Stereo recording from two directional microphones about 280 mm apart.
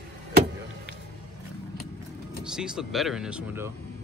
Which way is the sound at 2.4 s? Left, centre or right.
Centre.